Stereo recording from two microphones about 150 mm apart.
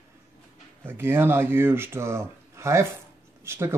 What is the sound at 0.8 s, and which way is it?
Speech, 15° right (ahead or behind).